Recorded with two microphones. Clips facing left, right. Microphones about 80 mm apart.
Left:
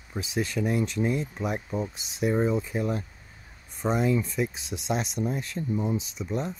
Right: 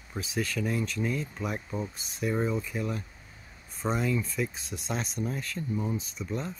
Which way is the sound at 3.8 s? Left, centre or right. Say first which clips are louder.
Left 4 dB; centre.